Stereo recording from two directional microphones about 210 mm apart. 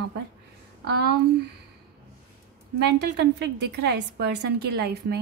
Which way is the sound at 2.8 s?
55° right (ahead or behind).